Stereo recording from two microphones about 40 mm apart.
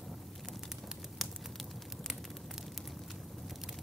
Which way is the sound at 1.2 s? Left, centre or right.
Centre.